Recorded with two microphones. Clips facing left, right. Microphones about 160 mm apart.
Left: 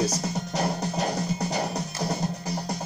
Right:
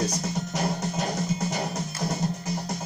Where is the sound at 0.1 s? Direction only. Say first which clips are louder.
Left 1 dB; 35° left (ahead or behind).